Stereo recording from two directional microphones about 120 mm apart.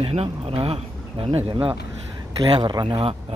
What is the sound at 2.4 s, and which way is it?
Speech, 35° right (ahead or behind).